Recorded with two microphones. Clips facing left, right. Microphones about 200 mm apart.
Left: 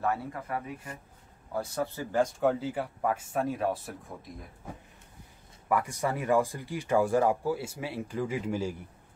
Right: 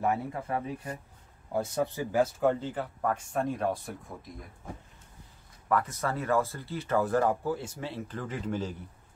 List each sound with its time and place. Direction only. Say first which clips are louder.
0.0 s speech: right 2 dB; 15° right (ahead or behind)
0.4 s speech: right 3 dB; 30° right (ahead or behind)
2.2 s speech: even; 5° left (ahead or behind)
5.7 s speech: even; 10° left (ahead or behind)